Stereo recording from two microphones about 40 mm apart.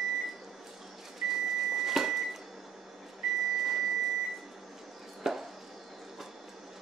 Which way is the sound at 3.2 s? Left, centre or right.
Centre.